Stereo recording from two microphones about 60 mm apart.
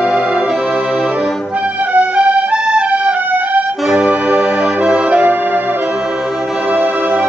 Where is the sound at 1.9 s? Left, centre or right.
Centre.